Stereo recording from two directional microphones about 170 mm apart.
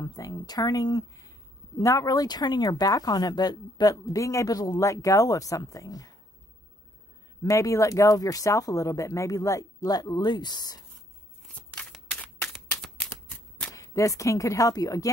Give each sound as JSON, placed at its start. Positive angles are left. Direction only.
{"t": 0.0, "sound": "speech", "side_deg": 20}
{"t": 7.4, "sound": "speech", "side_deg": 20}
{"t": 11.4, "sound": "shuffling cards", "side_deg": 5}
{"t": 13.7, "sound": "speech", "side_deg": 20}